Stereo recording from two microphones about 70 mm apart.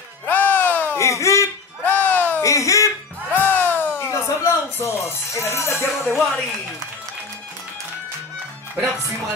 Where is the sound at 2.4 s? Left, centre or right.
Left.